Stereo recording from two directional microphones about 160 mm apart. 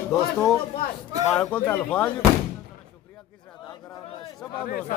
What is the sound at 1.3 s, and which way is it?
Speech, 5° left (ahead or behind).